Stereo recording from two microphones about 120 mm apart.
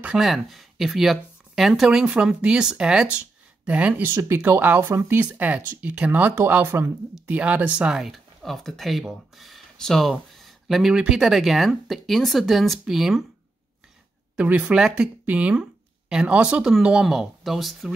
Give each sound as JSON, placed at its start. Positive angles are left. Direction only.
{"t": 0.0, "sound": "speech", "side_deg": -5}
{"t": 14.3, "sound": "speech", "side_deg": -10}